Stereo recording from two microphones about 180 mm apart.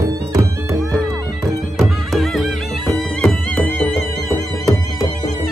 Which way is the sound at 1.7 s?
Centre (ahead or behind).